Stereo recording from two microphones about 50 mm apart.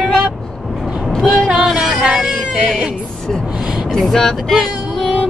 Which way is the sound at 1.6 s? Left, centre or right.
Centre.